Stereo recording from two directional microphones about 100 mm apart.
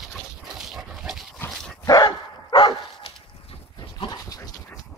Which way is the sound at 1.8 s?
45° left (ahead or behind).